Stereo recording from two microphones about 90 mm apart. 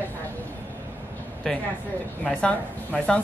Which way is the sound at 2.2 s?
15° left (ahead or behind).